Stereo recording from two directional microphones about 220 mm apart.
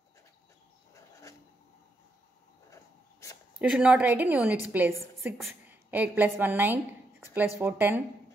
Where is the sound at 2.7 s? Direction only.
15° left (ahead or behind).